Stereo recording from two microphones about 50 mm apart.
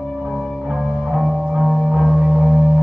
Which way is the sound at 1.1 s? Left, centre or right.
Centre.